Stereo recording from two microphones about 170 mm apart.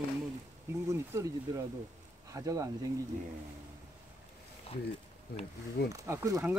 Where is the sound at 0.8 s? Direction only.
15° right (ahead or behind).